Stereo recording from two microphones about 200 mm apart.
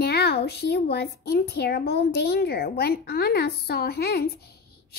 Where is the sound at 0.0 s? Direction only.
55° left (ahead or behind).